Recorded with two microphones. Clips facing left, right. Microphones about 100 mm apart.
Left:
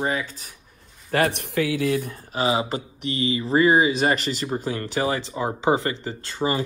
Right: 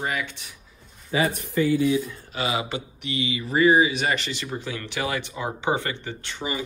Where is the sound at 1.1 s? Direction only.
70° left (ahead or behind).